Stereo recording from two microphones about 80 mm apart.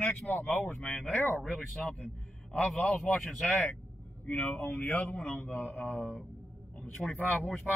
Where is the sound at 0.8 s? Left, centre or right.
Centre.